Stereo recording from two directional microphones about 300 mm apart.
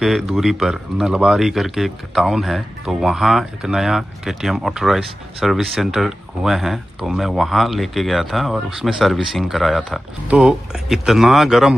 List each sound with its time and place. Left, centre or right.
0.0 s a man's voice: centre